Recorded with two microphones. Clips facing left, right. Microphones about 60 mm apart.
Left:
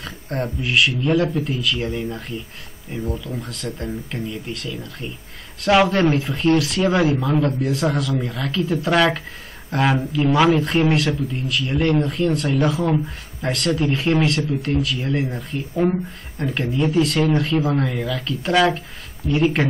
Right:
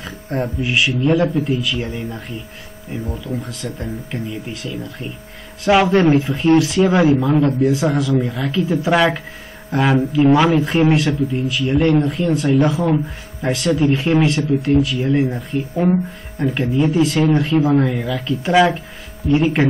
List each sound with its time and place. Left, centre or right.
0.0 s speech: centre
10.2 s speech: centre
10.5 s speech: centre